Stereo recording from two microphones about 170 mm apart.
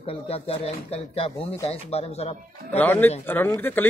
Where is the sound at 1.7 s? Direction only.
35° left (ahead or behind).